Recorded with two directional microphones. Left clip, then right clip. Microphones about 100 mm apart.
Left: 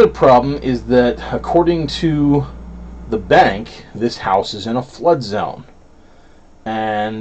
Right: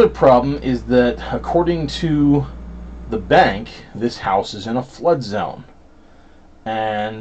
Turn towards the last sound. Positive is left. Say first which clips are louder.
# left 2 dB
turn(degrees=40)  # may be behind; listen again after turning